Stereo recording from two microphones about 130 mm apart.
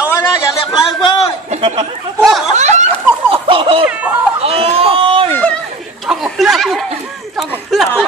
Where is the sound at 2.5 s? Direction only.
65° right (ahead or behind).